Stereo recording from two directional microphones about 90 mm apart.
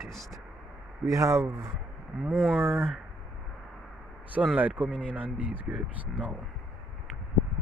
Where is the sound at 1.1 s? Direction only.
35° right (ahead or behind).